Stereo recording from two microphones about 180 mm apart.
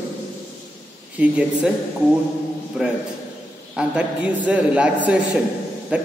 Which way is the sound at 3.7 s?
5° right (ahead or behind).